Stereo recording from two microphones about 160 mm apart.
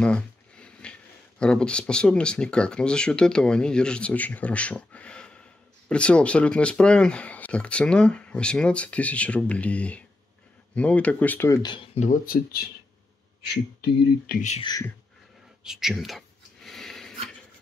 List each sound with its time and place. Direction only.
0.0 s a sound: 5° left (ahead or behind)
1.4 s speech: 5° left (ahead or behind); by 12.1 s 35° left (ahead or behind)
12.1 s speech: 65° left (ahead or behind)
13.5 s speech: 90° left
14.6 s speech: 25° left (ahead or behind)
15.6 s a sound: 5° right (ahead or behind)